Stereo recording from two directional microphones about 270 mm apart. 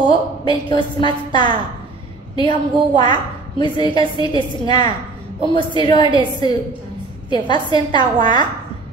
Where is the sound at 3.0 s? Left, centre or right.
Centre.